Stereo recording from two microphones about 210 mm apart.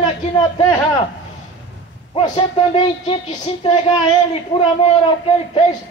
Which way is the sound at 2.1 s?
25° left (ahead or behind).